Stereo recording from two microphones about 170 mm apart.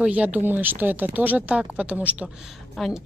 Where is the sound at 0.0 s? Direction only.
10° right (ahead or behind).